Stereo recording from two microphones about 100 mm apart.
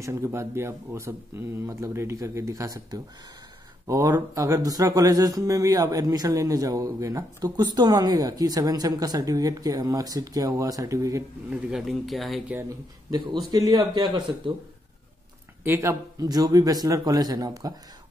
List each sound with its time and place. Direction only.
0.0 s speech: 30° right (ahead or behind)
11.5 s speech: 5° right (ahead or behind)
13.5 s speech: 40° right (ahead or behind)
15.6 s speech: 25° right (ahead or behind)